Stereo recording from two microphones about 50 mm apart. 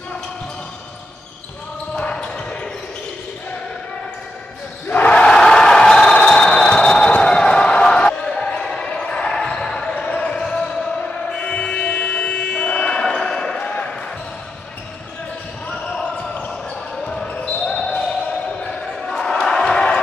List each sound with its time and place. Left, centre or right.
2.0 s basketball bounce: left
4.8 s basketball bounce: left
5.1 s a sound: centre
8.3 s basketball bounce: centre
11.0 s chant: centre
12.5 s a sound: left
13.6 s basketball bounce: left
16.9 s basketball bounce: centre
17.7 s basketball bounce: centre
18.6 s a sound: centre